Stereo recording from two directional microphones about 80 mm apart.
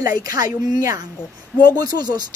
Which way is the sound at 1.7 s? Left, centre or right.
Right.